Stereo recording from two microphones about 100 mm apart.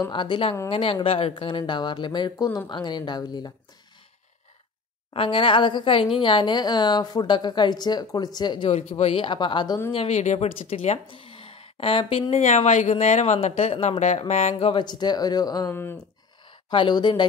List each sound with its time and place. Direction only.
0.1 s speech: 55° left (ahead or behind)
1.6 s a woman's voice: 50° left (ahead or behind)
5.1 s a woman's voice: 60° left (ahead or behind)
8.6 s speech: 90° left; by 9.8 s 50° left (ahead or behind)
10.0 s speech: 90° left; by 12.4 s 65° left (ahead or behind)
12.9 s speech: 90° left
14.8 s speech: 45° left (ahead or behind)
15.7 s speech: 20° left (ahead or behind)
16.7 s a woman's voice: 50° left (ahead or behind)